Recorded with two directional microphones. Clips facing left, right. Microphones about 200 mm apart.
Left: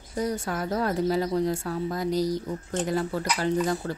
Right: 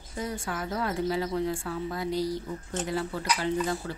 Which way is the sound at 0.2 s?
40° left (ahead or behind).